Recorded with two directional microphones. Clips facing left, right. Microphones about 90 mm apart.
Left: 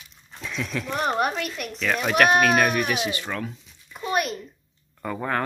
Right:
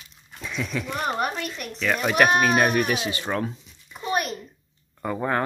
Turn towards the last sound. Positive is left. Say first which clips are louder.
# right 2 dB
turn(degrees=-10)  # may be behind; listen again after turning